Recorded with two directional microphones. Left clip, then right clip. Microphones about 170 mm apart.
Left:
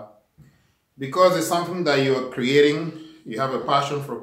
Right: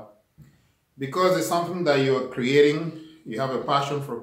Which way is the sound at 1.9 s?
5° right (ahead or behind).